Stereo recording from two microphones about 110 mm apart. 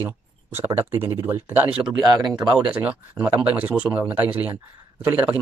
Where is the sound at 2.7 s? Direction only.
15° right (ahead or behind).